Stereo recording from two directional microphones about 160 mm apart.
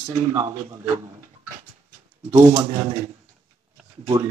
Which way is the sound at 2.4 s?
25° right (ahead or behind).